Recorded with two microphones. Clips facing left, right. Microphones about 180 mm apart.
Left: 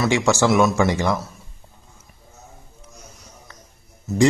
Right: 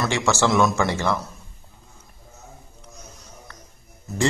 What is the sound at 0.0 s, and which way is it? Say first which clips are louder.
A man's voice: left 3 dB; 10° left (ahead or behind).